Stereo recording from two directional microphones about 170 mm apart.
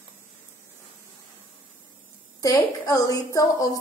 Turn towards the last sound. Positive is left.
turn(degrees=20)  # may be behind; listen again after turning